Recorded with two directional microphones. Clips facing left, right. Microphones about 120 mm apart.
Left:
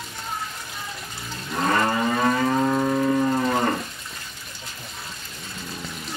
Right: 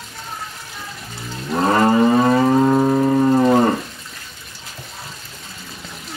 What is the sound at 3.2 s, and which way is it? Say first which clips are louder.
Moo: right 8 dB; 30° right (ahead or behind).